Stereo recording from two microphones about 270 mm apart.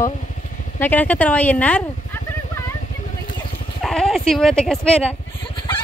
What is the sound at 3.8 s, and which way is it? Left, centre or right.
Speech, centre.